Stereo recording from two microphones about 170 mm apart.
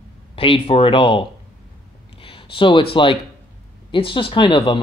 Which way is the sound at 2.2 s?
30° left (ahead or behind).